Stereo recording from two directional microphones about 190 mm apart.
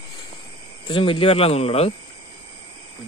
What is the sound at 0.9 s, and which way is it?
Speech, 25° left (ahead or behind).